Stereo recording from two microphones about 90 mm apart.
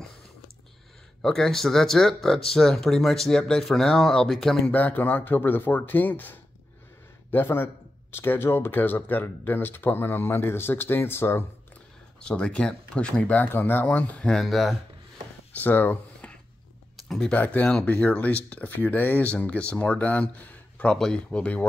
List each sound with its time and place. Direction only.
1.2 s speech: 5° left (ahead or behind)
4.7 s speech: 20° left (ahead or behind)
12.2 s speech: 10° left (ahead or behind)
15.5 s a sound: 20° left (ahead or behind)
16.9 s a sound: 5° left (ahead or behind)
17.3 s speech: 15° left (ahead or behind)